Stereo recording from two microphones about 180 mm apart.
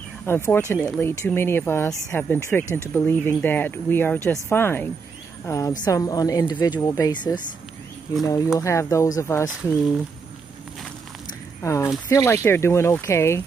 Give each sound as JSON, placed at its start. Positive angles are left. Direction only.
{"t": 0.2, "sound": "a woman's voice", "side_deg": 10}
{"t": 8.5, "sound": "speech", "side_deg": 20}
{"t": 11.6, "sound": "speech", "side_deg": 15}